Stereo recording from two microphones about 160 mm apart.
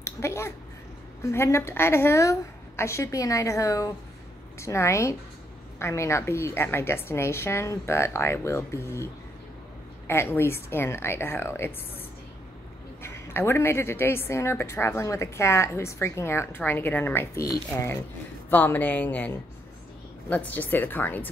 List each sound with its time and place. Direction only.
0.0 s a woman's voice: 15° left (ahead or behind)
13.0 s a woman's voice: 15° left (ahead or behind)